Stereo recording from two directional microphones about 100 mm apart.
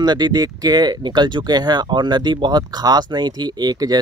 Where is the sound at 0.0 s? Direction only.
45° right (ahead or behind).